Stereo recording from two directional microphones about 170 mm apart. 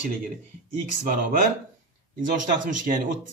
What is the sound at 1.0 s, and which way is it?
Speech, 50° right (ahead or behind).